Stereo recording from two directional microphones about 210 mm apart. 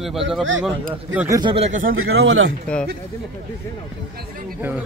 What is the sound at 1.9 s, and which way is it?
Speech, 70° right (ahead or behind).